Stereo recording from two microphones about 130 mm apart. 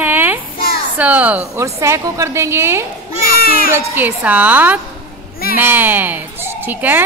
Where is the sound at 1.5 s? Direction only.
20° right (ahead or behind).